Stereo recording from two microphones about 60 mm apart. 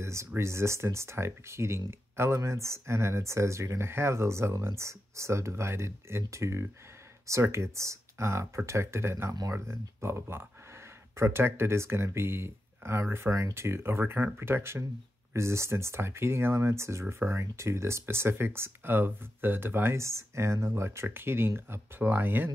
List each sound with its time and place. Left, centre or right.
0.0 s a sound: right
0.4 s speech: right
20.0 s speech: right